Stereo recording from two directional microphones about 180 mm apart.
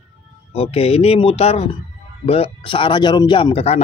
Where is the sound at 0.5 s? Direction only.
35° left (ahead or behind).